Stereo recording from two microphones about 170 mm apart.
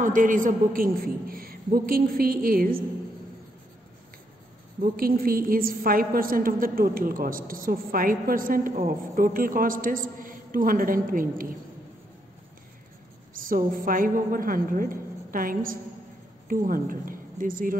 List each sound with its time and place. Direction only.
0.0 s a woman's voice: 50° right (ahead or behind)
4.9 s a woman's voice: 60° right (ahead or behind)
13.3 s a woman's voice: 55° right (ahead or behind)